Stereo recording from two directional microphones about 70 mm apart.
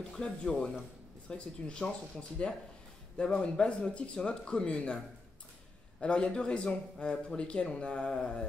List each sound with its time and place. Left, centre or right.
0.1 s a man's voice: centre